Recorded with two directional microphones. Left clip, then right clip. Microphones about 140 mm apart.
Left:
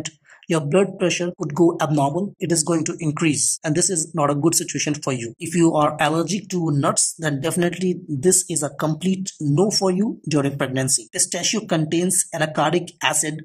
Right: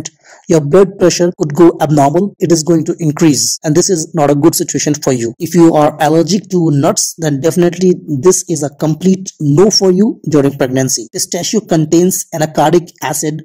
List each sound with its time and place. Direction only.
0.7 s speech: 30° right (ahead or behind)